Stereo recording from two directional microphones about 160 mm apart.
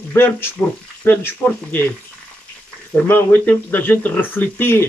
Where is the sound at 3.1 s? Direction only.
10° left (ahead or behind).